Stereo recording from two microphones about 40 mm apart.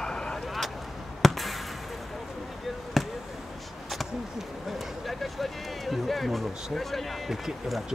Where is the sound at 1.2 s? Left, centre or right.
Centre.